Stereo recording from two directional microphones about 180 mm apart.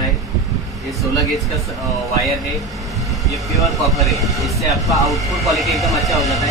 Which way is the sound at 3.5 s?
Centre (ahead or behind).